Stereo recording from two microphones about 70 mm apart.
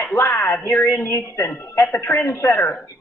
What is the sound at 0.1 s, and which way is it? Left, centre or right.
A woman's voice, left.